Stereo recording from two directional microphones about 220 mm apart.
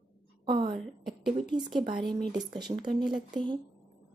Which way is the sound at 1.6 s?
20° right (ahead or behind).